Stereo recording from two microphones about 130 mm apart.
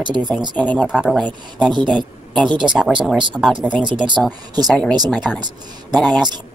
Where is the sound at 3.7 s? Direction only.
35° right (ahead or behind).